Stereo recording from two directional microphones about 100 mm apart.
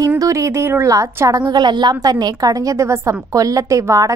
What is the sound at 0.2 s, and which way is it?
A woman's voice, 30° right (ahead or behind).